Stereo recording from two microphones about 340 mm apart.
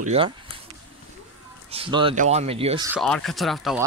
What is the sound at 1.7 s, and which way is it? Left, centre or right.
Speech, centre.